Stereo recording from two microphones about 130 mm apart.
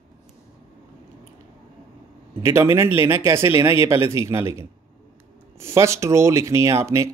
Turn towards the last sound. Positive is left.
turn(degrees=-20)  # may be behind; listen again after turning